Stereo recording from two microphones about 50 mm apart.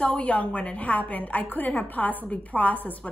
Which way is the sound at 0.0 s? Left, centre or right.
Left.